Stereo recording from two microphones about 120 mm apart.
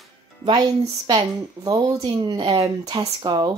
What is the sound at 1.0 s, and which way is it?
A woman's voice, 30° right (ahead or behind).